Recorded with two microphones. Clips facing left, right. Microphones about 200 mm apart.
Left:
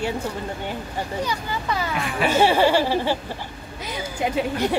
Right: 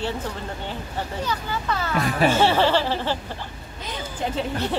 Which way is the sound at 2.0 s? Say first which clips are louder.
Right 3 dB; 40° right (ahead or behind).